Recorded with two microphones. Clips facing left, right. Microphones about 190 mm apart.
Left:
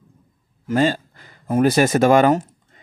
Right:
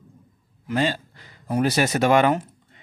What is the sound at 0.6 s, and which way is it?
Speech, 45° left (ahead or behind).